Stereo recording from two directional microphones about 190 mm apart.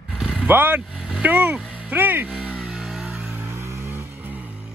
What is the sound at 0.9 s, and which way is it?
Vehicle, centre (ahead or behind).